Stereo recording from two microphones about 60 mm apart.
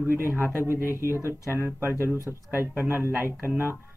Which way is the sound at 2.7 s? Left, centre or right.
Right.